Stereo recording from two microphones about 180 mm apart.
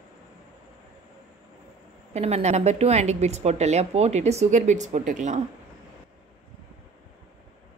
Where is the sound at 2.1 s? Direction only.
35° right (ahead or behind).